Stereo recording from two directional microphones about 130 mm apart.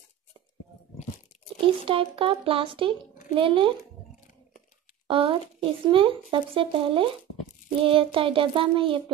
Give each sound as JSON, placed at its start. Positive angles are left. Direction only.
{"t": 1.9, "sound": "child singing", "side_deg": -45}
{"t": 5.0, "sound": "speech", "side_deg": -40}
{"t": 7.8, "sound": "child singing", "side_deg": -45}